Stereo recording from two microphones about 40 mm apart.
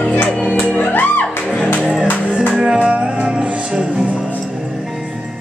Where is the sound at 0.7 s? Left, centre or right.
Left.